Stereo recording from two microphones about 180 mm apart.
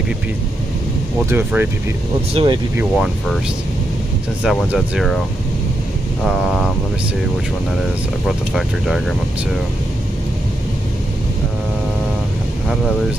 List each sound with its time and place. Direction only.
1.3 s speech: 10° right (ahead or behind)
2.3 s speech: 25° right (ahead or behind)
2.8 s speech: 5° right (ahead or behind)
4.4 s speech: centre (ahead or behind)
6.2 s speech: centre (ahead or behind)
8.3 s speech: centre (ahead or behind)